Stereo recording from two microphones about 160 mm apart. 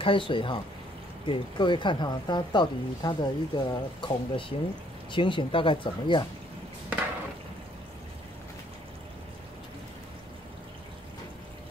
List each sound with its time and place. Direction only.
0.0 s speech: 30° left (ahead or behind)